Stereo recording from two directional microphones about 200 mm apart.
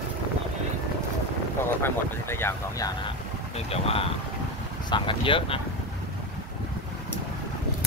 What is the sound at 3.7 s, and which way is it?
Speech, 30° left (ahead or behind).